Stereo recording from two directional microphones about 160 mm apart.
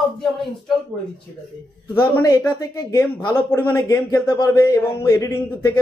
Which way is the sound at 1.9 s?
20° left (ahead or behind).